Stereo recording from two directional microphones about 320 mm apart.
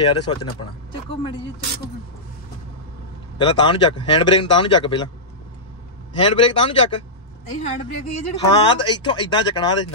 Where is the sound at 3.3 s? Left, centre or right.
Centre.